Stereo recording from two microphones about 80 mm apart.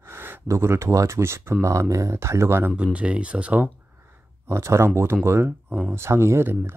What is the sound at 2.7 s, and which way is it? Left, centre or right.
Speech, centre.